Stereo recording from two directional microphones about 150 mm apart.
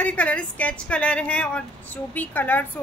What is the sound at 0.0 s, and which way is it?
Speech, 10° left (ahead or behind).